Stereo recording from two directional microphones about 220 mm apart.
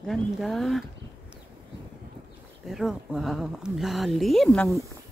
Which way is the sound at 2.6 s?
Centre (ahead or behind).